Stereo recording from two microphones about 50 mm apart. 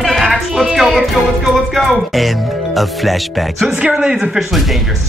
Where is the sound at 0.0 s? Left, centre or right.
Centre.